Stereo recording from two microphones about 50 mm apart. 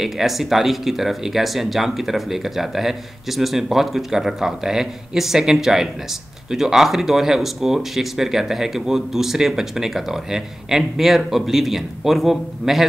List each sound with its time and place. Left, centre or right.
0.0 s speech: centre